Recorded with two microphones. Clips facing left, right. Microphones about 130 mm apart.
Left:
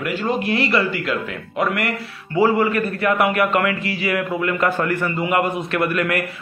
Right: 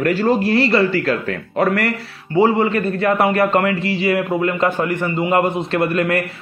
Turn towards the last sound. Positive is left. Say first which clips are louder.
# right 3 dB
turn(degrees=-30)  # may be behind; listen again after turning